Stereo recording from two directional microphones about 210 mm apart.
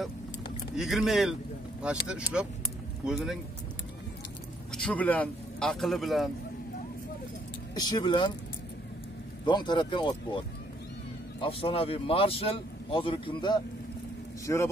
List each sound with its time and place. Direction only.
0.7 s a man's voice: centre (ahead or behind)
3.1 s a man's voice: centre (ahead or behind)
4.7 s a man's voice: 5° left (ahead or behind)
7.7 s a man's voice: 20° left (ahead or behind)
9.5 s a man's voice: 20° left (ahead or behind)
11.4 s a man's voice: 25° left (ahead or behind)